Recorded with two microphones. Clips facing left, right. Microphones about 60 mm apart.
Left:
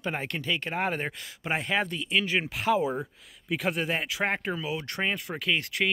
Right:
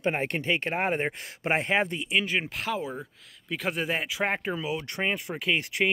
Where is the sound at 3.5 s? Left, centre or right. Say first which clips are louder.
Left 1 dB; centre.